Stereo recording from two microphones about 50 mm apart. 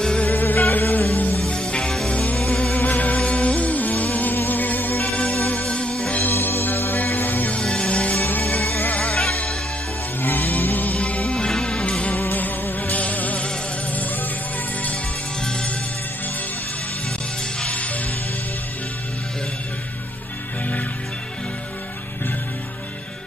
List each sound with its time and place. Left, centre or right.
0.2 s music: left
1.5 s music: centre; by 5.1 s left
5.1 s music: left
6.3 s music: left
7.5 s music: left
8.2 s music: left
9.1 s music: centre
10.2 s music: left
11.0 s music: left
12.4 s music: left
17.6 s music: left